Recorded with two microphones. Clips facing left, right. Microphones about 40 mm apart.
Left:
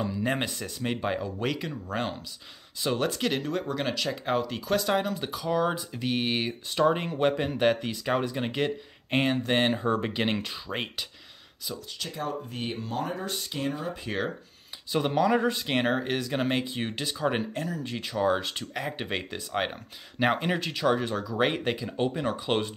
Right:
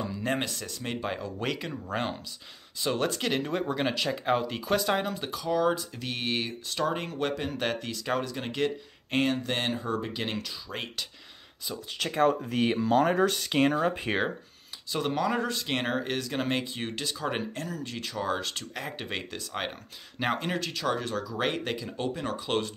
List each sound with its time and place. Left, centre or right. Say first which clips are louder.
0.0 s speech: left 2 dB; centre
9.8 s speech: left 4 dB; left
11.9 s speech: right 11 dB; right
12.5 s speech: right 8 dB; right
14.9 s speech: left 4 dB; centre